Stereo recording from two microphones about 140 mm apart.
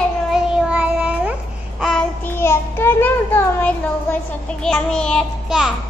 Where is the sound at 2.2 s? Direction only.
15° left (ahead or behind).